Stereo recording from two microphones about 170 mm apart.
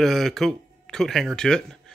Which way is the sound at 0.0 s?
Centre (ahead or behind).